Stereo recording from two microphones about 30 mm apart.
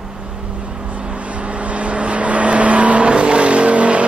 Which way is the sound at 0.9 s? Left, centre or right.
Right.